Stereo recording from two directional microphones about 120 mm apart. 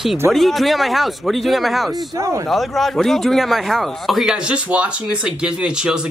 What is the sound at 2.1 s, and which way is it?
Speech, 25° right (ahead or behind).